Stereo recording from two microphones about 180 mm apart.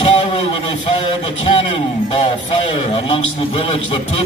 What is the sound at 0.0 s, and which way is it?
A man's voice, 35° left (ahead or behind).